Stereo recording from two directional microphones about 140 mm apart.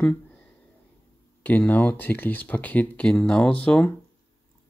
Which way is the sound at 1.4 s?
10° left (ahead or behind).